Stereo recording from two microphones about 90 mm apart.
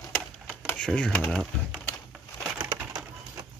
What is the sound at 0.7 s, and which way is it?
Speech, 10° left (ahead or behind).